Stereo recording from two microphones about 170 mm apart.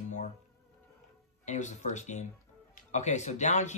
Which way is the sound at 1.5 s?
45° left (ahead or behind).